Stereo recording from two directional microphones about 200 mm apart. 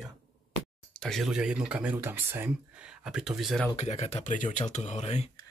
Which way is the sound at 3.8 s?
35° left (ahead or behind).